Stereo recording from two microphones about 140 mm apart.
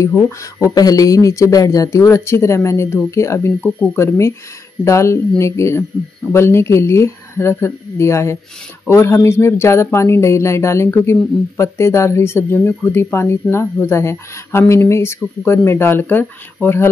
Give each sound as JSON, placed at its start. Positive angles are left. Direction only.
{"t": 0.4, "sound": "speech", "side_deg": 20}